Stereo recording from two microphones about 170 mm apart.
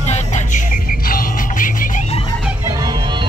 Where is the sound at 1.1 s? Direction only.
55° left (ahead or behind).